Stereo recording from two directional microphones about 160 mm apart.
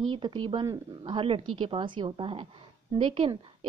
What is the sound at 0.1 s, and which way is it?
A woman's voice, 30° right (ahead or behind).